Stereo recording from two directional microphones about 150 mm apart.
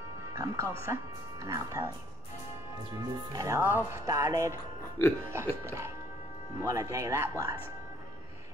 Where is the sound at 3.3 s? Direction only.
20° right (ahead or behind).